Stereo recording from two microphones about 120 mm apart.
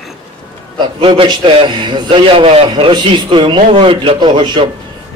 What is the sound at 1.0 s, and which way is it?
A man's voice, 45° right (ahead or behind).